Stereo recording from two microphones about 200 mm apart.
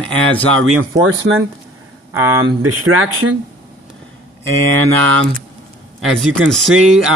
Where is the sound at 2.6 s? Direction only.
90° right.